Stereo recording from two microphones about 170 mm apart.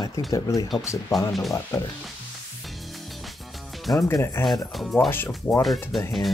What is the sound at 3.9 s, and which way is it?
Speech, 15° left (ahead or behind).